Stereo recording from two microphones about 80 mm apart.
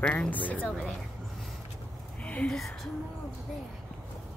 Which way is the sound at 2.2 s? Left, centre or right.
Centre.